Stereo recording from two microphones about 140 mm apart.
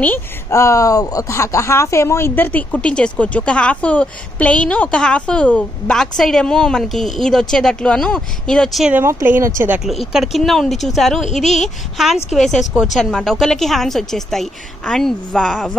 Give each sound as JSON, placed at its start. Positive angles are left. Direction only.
{"t": 0.0, "sound": "speech", "side_deg": 15}
{"t": 8.9, "sound": "speech", "side_deg": -15}
{"t": 9.8, "sound": "a woman's voice", "side_deg": 0}